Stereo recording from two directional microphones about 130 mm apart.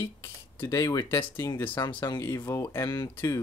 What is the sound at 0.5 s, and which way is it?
Speech, 25° left (ahead or behind).